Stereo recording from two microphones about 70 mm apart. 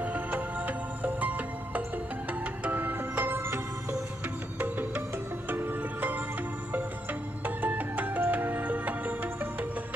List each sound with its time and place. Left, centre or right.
0.0 s music: right